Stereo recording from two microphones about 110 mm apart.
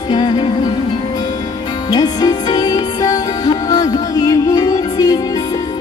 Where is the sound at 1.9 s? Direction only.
35° left (ahead or behind).